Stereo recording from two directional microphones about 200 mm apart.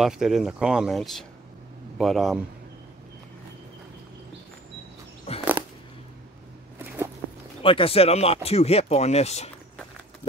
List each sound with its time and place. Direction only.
0.0 s speech: centre (ahead or behind)
5.3 s a sound: 30° left (ahead or behind)
7.6 s speech: 25° left (ahead or behind)